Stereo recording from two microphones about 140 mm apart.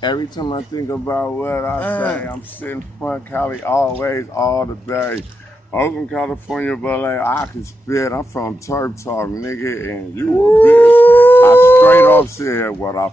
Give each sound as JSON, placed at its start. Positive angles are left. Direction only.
{"t": 0.0, "sound": "speech", "side_deg": 30}
{"t": 0.8, "sound": "speech", "side_deg": 15}